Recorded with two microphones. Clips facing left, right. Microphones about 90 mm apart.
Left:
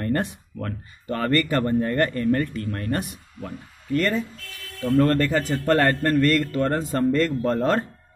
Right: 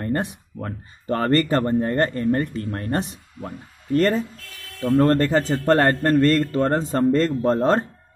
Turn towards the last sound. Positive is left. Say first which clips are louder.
# right 3 dB
turn(degrees=-30)  # may be behind; listen again after turning